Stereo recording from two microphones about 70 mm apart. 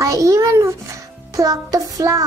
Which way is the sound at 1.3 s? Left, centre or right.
Right.